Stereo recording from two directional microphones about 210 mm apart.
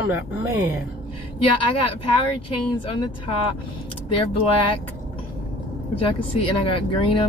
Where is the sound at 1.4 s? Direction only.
25° left (ahead or behind).